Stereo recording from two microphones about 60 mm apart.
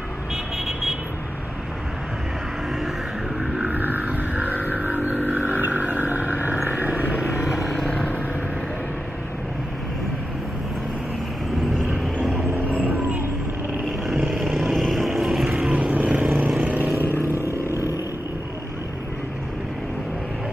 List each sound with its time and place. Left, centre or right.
3.6 s a sound: right
7.2 s vehicle: centre
11.6 s vehicle: centre
14.0 s vehicle: centre
15.5 s vehicle: centre
16.9 s vehicle: right